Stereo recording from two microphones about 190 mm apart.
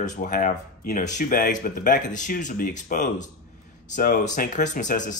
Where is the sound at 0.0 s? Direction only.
45° left (ahead or behind).